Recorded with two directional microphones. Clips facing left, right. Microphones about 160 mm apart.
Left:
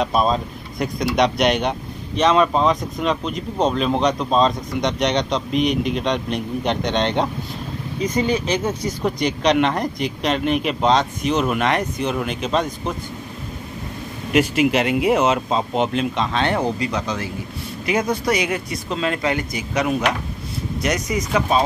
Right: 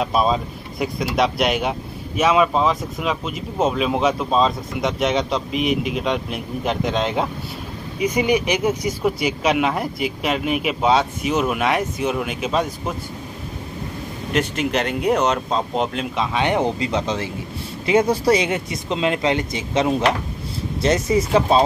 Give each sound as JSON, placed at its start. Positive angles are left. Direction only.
{"t": 0.0, "sound": "speech", "side_deg": -5}
{"t": 14.3, "sound": "speech", "side_deg": 10}
{"t": 16.3, "sound": "speech", "side_deg": -15}